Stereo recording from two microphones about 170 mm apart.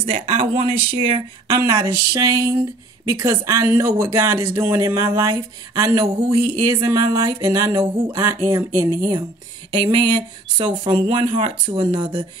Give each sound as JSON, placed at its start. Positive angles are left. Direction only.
{"t": 0.0, "sound": "speech", "side_deg": -35}
{"t": 1.6, "sound": "speech", "side_deg": -20}